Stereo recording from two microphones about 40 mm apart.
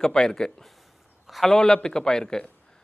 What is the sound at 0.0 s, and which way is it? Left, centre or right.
Speech, centre.